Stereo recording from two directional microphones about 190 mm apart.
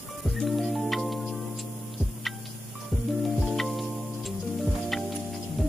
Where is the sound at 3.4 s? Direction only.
Centre (ahead or behind).